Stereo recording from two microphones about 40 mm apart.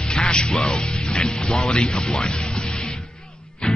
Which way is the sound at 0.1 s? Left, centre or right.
Centre.